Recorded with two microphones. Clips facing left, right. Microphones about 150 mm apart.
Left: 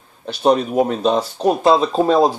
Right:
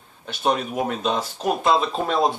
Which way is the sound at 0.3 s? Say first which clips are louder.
Left 7 dB; 35° left (ahead or behind).